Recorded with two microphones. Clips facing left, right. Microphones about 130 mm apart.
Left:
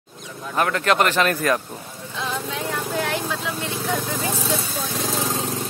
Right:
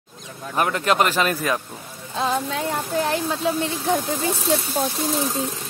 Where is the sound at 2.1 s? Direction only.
40° right (ahead or behind).